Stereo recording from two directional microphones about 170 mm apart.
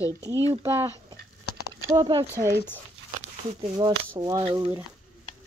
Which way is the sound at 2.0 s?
25° right (ahead or behind).